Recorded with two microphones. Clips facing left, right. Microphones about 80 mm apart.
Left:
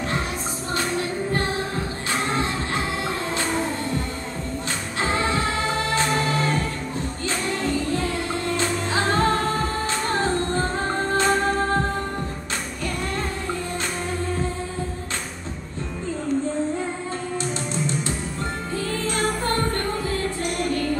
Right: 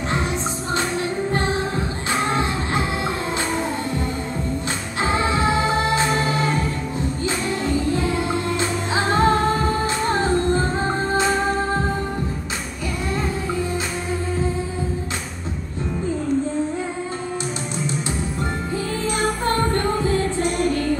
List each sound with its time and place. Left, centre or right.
1.3 s music: right
5.0 s music: centre
19.0 s music: centre